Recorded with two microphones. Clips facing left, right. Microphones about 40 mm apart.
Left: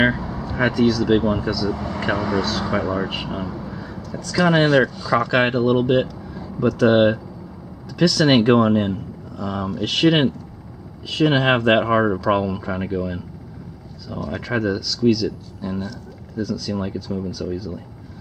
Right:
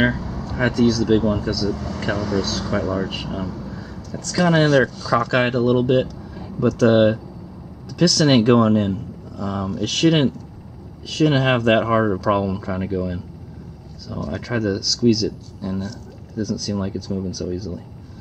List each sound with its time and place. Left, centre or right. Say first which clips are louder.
0.0 s speech: left 1 dB; centre